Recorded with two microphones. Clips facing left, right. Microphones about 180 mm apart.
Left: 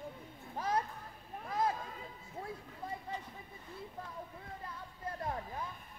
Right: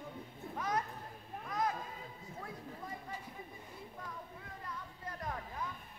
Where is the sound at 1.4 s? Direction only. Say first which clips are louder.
Left 2 dB; 30° left (ahead or behind).